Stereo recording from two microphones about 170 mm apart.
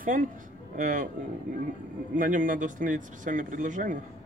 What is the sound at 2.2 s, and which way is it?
Speech, 50° right (ahead or behind).